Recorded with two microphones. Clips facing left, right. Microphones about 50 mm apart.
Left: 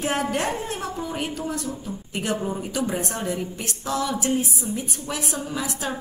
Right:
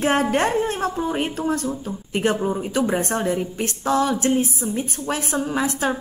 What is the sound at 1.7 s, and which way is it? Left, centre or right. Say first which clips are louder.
A woman's voice: right 5 dB; right.